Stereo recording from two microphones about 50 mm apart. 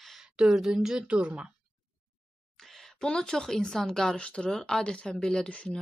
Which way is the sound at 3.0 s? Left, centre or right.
Centre.